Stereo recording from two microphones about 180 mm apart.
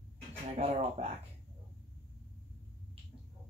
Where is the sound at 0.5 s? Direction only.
35° right (ahead or behind).